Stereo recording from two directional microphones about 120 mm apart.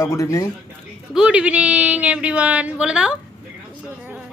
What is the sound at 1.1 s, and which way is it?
Speech, 10° right (ahead or behind).